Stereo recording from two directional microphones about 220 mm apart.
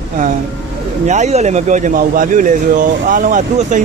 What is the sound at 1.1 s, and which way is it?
Speech, 30° right (ahead or behind).